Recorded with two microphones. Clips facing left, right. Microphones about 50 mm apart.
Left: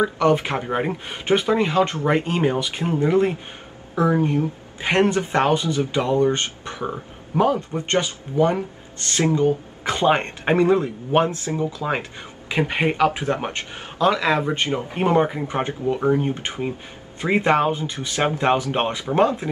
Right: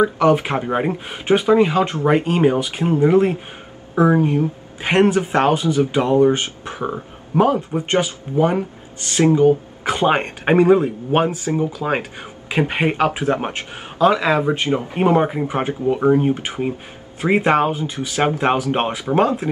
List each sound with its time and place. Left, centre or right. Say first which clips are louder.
0.0 s speech: right 3 dB; centre
3.9 s speech: right 4 dB; right
7.3 s speech: right 3 dB; right
7.7 s speech: right 3 dB; centre